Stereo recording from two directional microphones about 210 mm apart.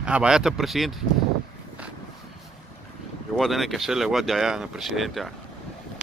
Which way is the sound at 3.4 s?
Centre (ahead or behind).